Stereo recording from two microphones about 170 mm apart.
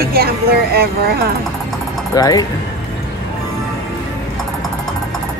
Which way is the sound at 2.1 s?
20° left (ahead or behind).